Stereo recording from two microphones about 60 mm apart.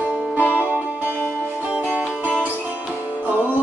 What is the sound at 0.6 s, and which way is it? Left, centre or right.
Music, left.